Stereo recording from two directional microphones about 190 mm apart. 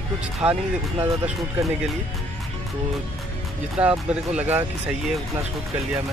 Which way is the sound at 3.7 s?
5° right (ahead or behind).